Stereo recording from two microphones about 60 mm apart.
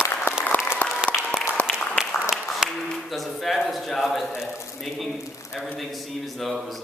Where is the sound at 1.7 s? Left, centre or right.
Centre.